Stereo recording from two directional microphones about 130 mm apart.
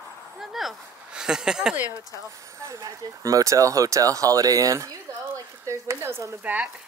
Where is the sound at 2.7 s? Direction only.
25° right (ahead or behind).